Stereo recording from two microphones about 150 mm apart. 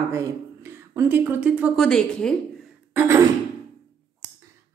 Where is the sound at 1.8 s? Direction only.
5° left (ahead or behind).